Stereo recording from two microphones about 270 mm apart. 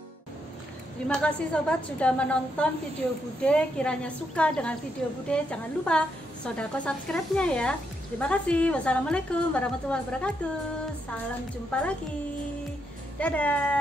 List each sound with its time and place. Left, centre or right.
1.0 s a woman's voice: centre
11.7 s a woman's voice: centre
13.2 s a woman's voice: centre